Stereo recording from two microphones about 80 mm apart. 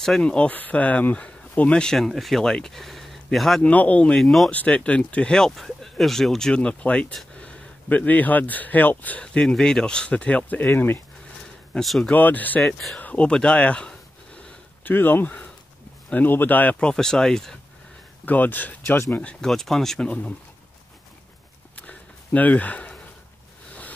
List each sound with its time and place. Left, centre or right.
0.0 s speech: centre
3.6 s speech: centre
4.2 s speech: centre
4.5 s speech: centre
11.8 s speech: centre
12.1 s speech: left
14.9 s speech: left
16.9 s speech: centre
18.2 s speech: left
18.9 s speech: left
19.2 s speech: centre
20.1 s speech: centre
21.7 s a sound: centre